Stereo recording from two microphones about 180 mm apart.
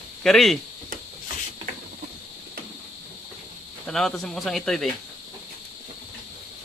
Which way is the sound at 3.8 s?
Centre (ahead or behind).